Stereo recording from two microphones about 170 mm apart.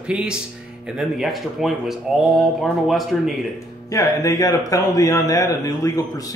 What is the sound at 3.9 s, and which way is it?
Speech, 20° left (ahead or behind).